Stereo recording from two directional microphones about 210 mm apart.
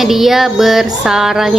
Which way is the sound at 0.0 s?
Centre (ahead or behind).